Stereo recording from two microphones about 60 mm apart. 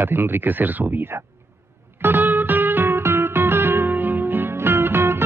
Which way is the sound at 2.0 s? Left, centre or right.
Right.